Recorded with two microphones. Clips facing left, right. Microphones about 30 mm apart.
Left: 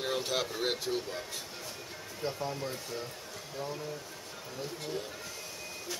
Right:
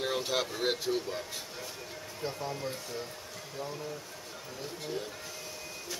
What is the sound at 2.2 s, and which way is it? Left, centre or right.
Speech, centre.